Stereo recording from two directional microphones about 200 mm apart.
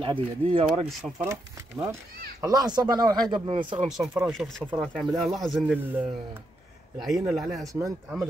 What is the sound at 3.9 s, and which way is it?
A man's voice, centre (ahead or behind).